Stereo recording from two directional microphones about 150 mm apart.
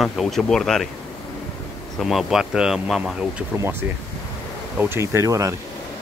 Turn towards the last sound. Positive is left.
turn(degrees=-20)  # may be behind; listen again after turning